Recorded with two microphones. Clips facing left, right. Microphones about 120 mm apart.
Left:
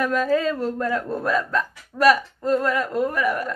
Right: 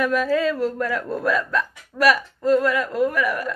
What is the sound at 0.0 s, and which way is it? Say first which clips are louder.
A woman's voice: right 1 dB; 35° left (ahead or behind).